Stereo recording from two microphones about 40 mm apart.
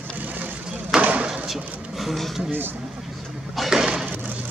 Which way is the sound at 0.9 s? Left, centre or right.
Centre.